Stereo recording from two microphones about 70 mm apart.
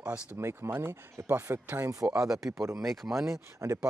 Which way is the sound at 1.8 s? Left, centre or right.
Right.